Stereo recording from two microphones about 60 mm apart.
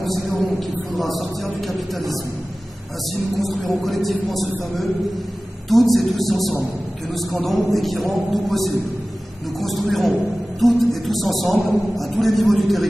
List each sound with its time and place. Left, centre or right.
0.0 s a man's voice: centre
3.3 s a man's voice: centre